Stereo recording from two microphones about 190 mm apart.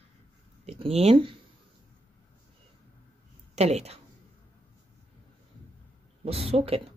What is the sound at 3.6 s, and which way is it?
Speech, 35° right (ahead or behind).